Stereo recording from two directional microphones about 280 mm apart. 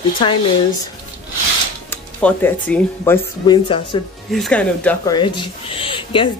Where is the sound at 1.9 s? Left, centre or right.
Centre.